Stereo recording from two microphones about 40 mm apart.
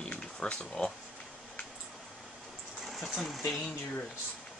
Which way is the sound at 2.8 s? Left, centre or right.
Centre.